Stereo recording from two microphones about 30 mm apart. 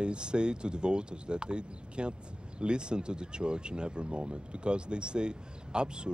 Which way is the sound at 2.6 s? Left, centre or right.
Right.